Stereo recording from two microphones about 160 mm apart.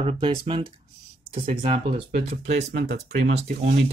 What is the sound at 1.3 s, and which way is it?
Speech, 60° right (ahead or behind).